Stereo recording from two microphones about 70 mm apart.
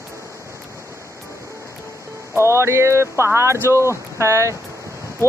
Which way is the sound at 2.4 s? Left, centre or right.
Right.